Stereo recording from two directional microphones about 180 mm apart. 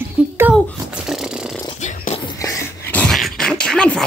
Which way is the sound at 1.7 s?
40° left (ahead or behind).